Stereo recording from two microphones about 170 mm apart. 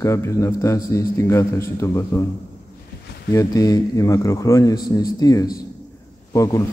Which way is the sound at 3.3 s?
20° left (ahead or behind).